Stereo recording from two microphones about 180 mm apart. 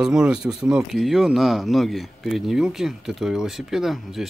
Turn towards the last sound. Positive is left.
turn(degrees=0)  # may be behind; listen again after turning